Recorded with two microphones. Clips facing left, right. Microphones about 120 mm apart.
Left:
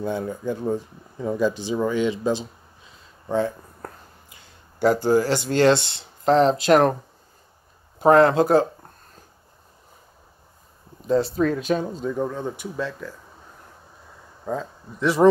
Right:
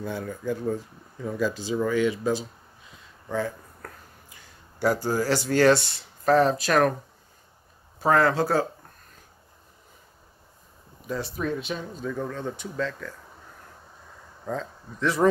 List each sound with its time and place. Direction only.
0.0 s speech: 20° left (ahead or behind)
3.3 s a sound: 25° left (ahead or behind)
4.8 s speech: 25° left (ahead or behind)
8.0 s speech: 25° left (ahead or behind)
11.0 s speech: 25° left (ahead or behind); by 11.9 s 40° left (ahead or behind)
12.1 s speech: 15° left (ahead or behind)
14.4 s speech: 10° left (ahead or behind)